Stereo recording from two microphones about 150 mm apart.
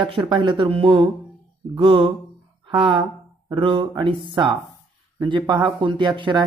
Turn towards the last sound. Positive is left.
turn(degrees=-30)  # may be behind; listen again after turning